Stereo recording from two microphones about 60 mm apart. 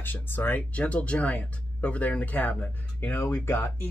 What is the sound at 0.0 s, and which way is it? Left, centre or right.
Speech, left.